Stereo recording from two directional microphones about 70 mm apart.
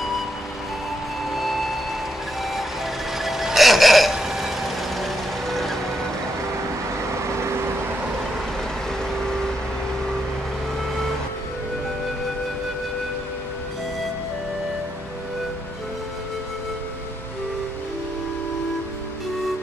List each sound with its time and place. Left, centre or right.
1.3 s vehicle: centre
3.2 s vehicle: centre
7.3 s vehicle: right